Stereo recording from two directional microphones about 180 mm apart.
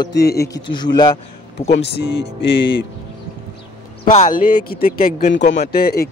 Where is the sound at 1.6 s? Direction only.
70° left (ahead or behind).